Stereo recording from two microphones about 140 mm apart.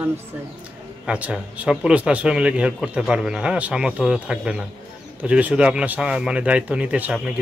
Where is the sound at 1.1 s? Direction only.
10° right (ahead or behind).